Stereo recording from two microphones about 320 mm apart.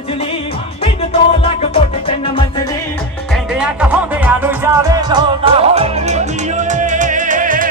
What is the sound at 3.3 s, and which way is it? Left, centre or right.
Music, centre.